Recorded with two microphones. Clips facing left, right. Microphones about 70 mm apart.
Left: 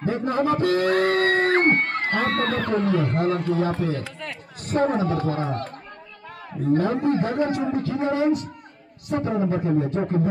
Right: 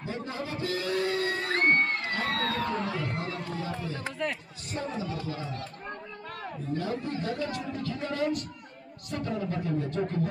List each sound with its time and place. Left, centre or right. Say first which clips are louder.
0.0 s a man's voice: left 12 dB; left
6.7 s a man's voice: left 12 dB; left
7.9 s a man's voice: left 6 dB; left
9.3 s a man's voice: left 8 dB; left